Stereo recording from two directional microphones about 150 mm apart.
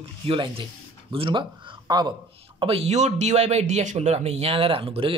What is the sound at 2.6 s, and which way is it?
Speech, 45° right (ahead or behind).